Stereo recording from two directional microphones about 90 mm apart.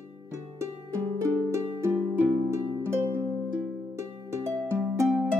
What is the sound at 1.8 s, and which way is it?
Music, 25° right (ahead or behind).